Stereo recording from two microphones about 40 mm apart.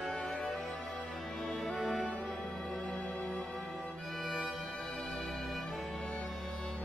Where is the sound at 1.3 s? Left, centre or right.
Centre.